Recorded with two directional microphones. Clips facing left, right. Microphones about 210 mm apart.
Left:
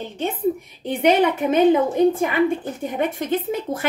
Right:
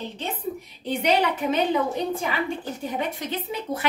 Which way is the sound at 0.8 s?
50° left (ahead or behind).